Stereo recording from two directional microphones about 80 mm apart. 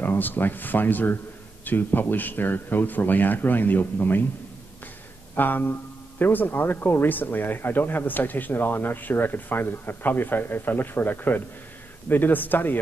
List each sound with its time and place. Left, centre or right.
0.0 s speech: left
5.3 s speech: left